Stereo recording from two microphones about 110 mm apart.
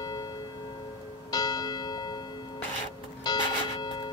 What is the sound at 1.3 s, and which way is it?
Church bell, 35° left (ahead or behind).